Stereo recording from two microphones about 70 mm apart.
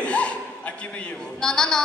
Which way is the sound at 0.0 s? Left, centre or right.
Centre.